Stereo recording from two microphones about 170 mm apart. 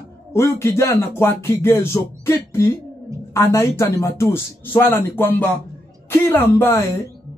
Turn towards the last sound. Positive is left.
turn(degrees=15)  # may be behind; listen again after turning